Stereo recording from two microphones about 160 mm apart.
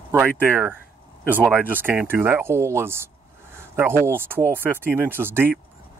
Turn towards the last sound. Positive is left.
turn(degrees=-15)  # may be behind; listen again after turning